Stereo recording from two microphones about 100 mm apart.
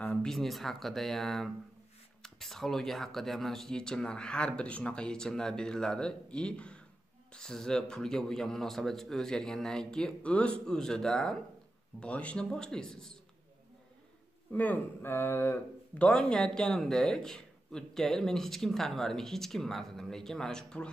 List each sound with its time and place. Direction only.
0.0 s a sound: 15° left (ahead or behind)
0.3 s a man's voice: 5° left (ahead or behind)
14.5 s a man's voice: 15° left (ahead or behind)
16.0 s a man's voice: 10° left (ahead or behind)